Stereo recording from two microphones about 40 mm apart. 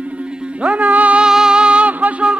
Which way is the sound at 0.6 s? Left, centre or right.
Right.